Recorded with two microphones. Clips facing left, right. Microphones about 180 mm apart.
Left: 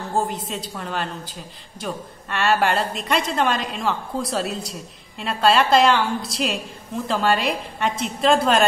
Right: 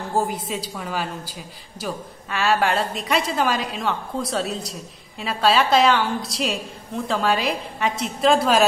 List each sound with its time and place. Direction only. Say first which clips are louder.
0.1 s a woman's voice: right 1 dB; 5° right (ahead or behind)